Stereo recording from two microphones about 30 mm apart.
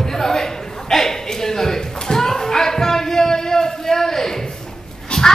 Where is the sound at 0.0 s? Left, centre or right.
Centre.